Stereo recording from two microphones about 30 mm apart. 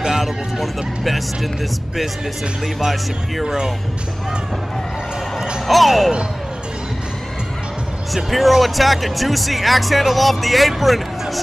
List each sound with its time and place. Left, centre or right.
0.1 s speech: centre
3.4 s speech: right
5.7 s speech: centre
8.1 s speech: centre